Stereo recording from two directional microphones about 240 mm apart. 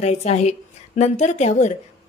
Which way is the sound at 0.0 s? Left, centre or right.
Left.